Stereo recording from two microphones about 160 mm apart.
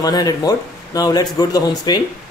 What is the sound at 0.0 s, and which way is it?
Speech, 25° left (ahead or behind).